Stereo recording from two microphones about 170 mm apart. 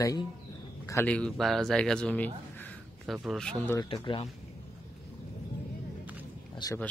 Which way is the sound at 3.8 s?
30° left (ahead or behind).